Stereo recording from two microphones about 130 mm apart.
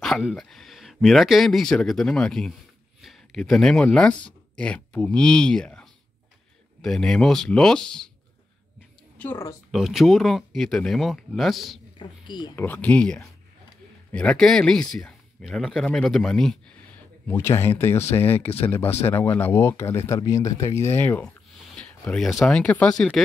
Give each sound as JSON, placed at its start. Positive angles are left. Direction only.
{"t": 0.2, "sound": "speech", "side_deg": 0}
{"t": 9.2, "sound": "speech", "side_deg": 20}
{"t": 9.7, "sound": "speech", "side_deg": 0}
{"t": 12.0, "sound": "speech", "side_deg": 35}
{"t": 12.5, "sound": "speech", "side_deg": 10}
{"t": 17.3, "sound": "speech", "side_deg": 20}